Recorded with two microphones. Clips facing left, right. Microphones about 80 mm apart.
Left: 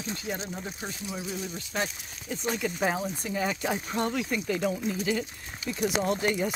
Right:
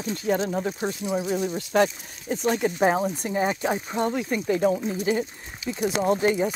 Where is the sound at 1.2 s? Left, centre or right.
Right.